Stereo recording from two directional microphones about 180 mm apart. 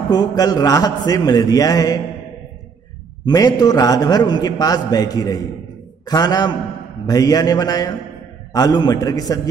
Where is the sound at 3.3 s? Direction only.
20° left (ahead or behind).